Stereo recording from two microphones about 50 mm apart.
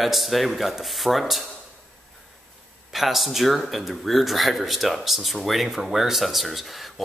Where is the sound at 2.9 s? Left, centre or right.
Centre.